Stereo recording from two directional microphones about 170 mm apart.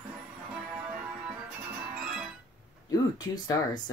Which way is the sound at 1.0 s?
10° right (ahead or behind).